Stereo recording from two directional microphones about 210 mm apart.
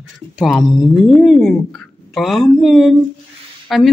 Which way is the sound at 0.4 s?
Centre (ahead or behind).